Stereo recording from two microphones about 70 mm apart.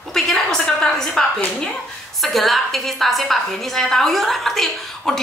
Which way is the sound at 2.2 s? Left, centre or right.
Centre.